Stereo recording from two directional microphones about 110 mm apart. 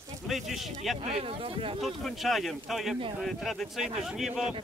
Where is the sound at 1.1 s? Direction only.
55° right (ahead or behind).